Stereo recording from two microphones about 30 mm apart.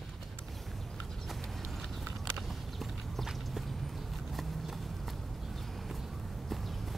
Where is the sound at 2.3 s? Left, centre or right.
Centre.